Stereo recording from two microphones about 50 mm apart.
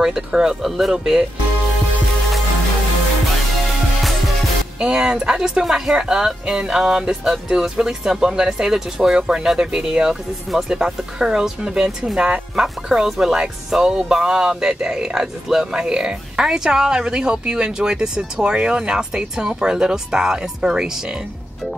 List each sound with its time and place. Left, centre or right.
0.0 s speech: centre
4.7 s speech: centre